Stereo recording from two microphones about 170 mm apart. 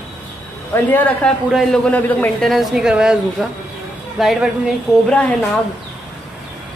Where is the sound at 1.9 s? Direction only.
10° left (ahead or behind).